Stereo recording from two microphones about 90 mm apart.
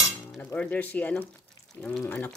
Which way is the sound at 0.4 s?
15° left (ahead or behind).